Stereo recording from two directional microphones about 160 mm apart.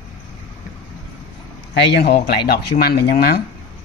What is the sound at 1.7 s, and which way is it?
Speech, 90° left.